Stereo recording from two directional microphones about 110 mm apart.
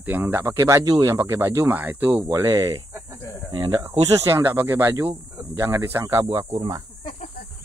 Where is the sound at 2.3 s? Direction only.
25° right (ahead or behind).